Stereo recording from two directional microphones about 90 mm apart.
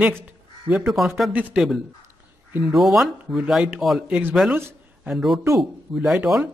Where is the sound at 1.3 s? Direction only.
20° right (ahead or behind).